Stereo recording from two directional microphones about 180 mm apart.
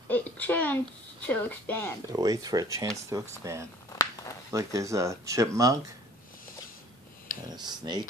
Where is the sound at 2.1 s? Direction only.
20° right (ahead or behind).